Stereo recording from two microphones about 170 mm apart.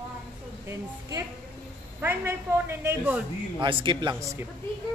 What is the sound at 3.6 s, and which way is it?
Speech, 30° right (ahead or behind).